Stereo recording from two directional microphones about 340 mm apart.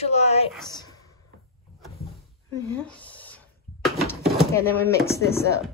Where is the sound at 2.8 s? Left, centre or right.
Centre.